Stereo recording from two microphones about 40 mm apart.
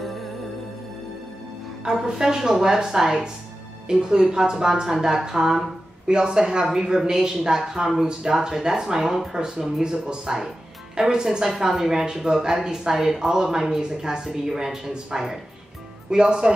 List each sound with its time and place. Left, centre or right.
1.9 s speech: centre